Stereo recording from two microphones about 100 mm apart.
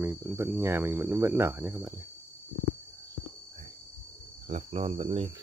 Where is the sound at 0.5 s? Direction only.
25° right (ahead or behind).